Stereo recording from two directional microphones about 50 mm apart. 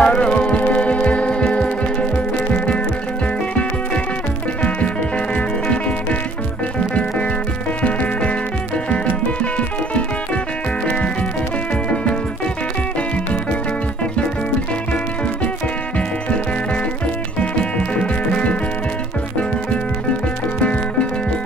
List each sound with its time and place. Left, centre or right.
0.0 s music: centre
4.6 s music: left
7.8 s music: left
9.4 s music: left
11.9 s music: left
17.4 s music: left